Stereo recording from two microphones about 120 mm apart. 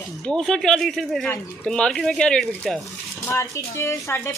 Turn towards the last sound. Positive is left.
turn(degrees=25)  # may be behind; listen again after turning